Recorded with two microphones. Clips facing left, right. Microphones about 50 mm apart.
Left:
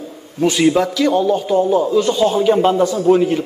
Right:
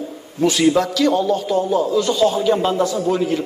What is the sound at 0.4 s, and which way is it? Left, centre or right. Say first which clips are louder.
A man's voice: left 2 dB; centre.